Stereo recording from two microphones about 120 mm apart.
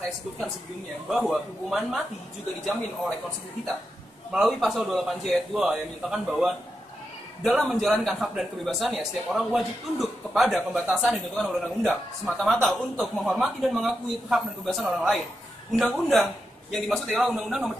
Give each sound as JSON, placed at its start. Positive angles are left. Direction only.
{"t": 1.0, "sound": "a man's voice", "side_deg": 0}
{"t": 4.3, "sound": "a man's voice", "side_deg": 0}